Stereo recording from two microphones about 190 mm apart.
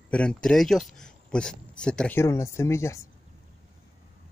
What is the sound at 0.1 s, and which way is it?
Speech, 5° left (ahead or behind).